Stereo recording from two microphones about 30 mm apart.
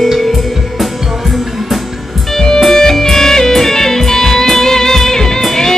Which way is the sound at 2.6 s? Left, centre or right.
Centre.